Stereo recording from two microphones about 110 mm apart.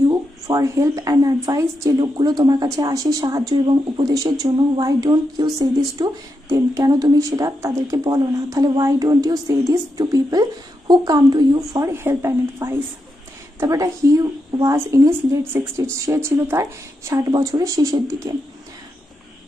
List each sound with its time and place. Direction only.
0.1 s speech: 35° right (ahead or behind)
11.9 s a woman's voice: 20° right (ahead or behind)